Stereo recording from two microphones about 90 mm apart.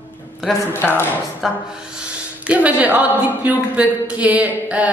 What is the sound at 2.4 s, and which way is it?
Speech, 15° right (ahead or behind).